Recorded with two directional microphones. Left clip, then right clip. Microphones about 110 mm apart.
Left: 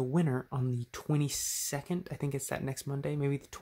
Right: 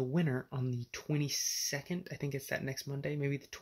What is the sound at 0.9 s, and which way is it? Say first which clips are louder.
Speech: left 2 dB; 55° left (ahead or behind).